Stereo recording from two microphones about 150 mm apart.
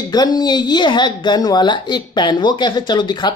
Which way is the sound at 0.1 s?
25° left (ahead or behind).